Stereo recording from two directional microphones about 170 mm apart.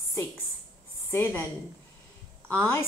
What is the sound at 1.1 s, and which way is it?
Speech, 15° left (ahead or behind).